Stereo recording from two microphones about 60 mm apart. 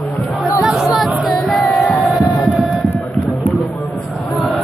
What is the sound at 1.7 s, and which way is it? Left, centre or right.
Music, left.